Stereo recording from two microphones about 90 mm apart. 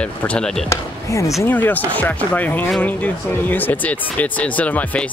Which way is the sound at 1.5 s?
20° left (ahead or behind).